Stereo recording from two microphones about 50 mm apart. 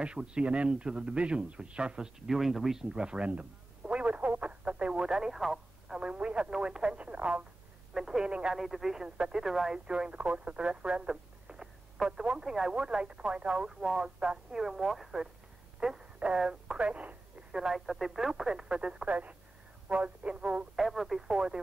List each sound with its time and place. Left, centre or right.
0.0 s speech: right
2.2 s speech: centre
2.9 s frog: centre
5.4 s radio: centre
5.9 s speech: right
7.9 s speech: centre
8.5 s speech: centre
9.0 s speech: centre
16.7 s speech: right
17.5 s speech: centre
17.8 s speech: centre
19.0 s speech: right
20.7 s speech: centre
21.3 s speech: centre